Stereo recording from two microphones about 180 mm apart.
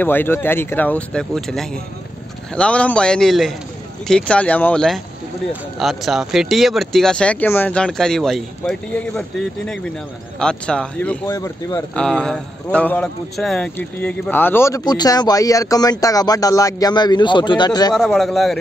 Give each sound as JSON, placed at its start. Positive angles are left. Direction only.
{"t": 0.0, "sound": "speech", "side_deg": 10}
{"t": 10.4, "sound": "speech", "side_deg": 5}
{"t": 11.9, "sound": "speech", "side_deg": 5}
{"t": 17.9, "sound": "speech", "side_deg": 0}